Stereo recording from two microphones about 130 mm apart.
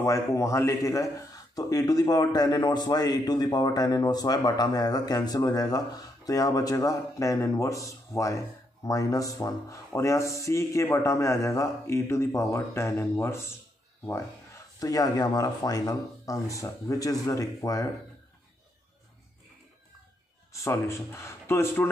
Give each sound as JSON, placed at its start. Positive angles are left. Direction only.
{"t": 0.0, "sound": "speech", "side_deg": 25}
{"t": 14.8, "sound": "speech", "side_deg": 30}
{"t": 20.6, "sound": "speech", "side_deg": 20}